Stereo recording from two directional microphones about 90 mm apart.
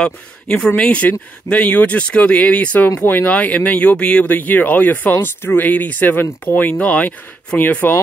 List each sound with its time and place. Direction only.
0.0 s speech: 10° left (ahead or behind)